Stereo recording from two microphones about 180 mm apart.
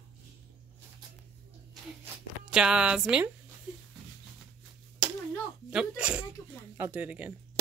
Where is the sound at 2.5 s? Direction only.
5° right (ahead or behind).